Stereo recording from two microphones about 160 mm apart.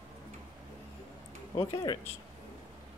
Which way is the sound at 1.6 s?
20° left (ahead or behind).